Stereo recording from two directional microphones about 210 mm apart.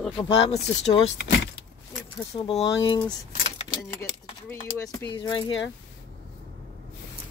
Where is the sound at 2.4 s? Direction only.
25° left (ahead or behind).